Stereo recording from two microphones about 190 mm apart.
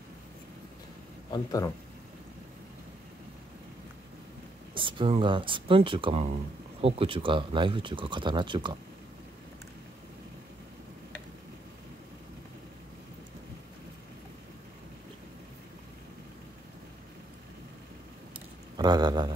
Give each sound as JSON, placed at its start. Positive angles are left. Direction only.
{"t": 1.3, "sound": "speech", "side_deg": 20}
{"t": 4.7, "sound": "speech", "side_deg": -25}
{"t": 18.8, "sound": "speech", "side_deg": -20}